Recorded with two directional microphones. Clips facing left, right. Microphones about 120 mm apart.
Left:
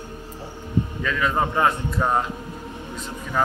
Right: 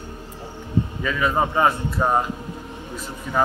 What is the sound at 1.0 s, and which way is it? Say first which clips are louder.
Speech: right 2 dB; 10° right (ahead or behind).